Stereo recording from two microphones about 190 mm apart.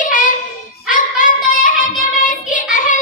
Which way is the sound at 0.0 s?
45° left (ahead or behind).